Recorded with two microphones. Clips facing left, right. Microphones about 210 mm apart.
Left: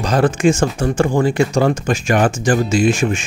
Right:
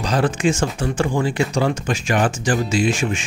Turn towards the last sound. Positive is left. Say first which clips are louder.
# left 4 dB
turn(degrees=45)  # may be behind; listen again after turning